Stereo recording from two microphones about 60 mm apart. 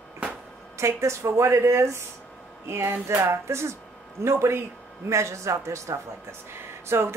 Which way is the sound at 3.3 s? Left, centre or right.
Right.